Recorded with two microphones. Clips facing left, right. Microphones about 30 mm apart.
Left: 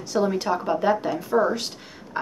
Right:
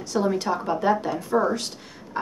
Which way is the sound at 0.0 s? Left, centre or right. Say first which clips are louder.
Left 1 dB; centre.